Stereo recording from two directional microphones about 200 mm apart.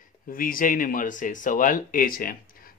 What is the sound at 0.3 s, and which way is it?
Speech, 45° left (ahead or behind).